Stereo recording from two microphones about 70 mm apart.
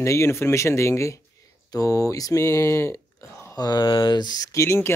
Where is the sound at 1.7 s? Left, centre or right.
Left.